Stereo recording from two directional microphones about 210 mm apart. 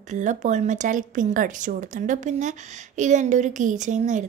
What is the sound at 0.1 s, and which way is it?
A woman's voice, 35° right (ahead or behind).